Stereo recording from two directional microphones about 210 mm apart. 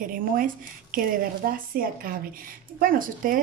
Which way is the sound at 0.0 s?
40° right (ahead or behind).